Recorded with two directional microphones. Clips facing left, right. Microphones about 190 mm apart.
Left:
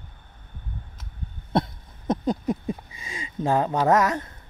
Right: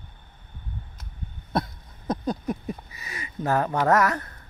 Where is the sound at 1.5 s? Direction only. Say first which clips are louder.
Left 3 dB; 25° left (ahead or behind).